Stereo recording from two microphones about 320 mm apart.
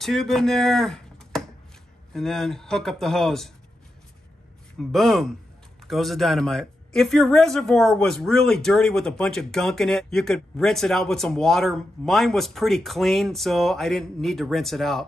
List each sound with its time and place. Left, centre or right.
0.0 s speech: centre
4.7 s speech: centre